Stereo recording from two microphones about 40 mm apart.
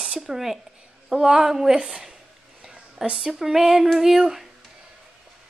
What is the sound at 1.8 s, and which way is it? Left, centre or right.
A woman's voice, right.